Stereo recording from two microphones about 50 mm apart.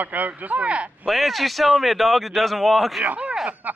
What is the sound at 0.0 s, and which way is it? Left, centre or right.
Speech, right.